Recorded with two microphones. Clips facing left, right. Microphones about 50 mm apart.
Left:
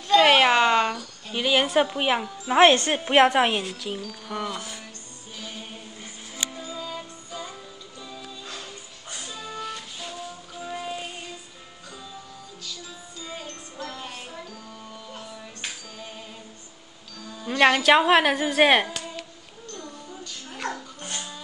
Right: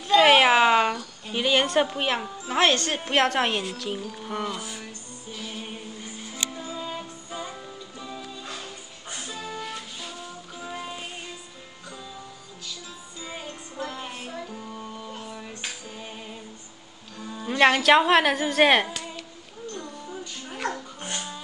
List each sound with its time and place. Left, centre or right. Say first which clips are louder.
0.1 s cat: even; centre
2.4 s a woman's voice: left 6 dB; left; by 4.0 s centre
4.0 s speech: right 2 dB; right
4.3 s music: even; centre
6.6 s music: right 1 dB; right; by 11.1 s centre
13.2 s music: right 1 dB; centre
17.2 s music: right 4 dB; centre
17.5 s a woman's voice: even; centre
19.7 s music: right 2 dB; centre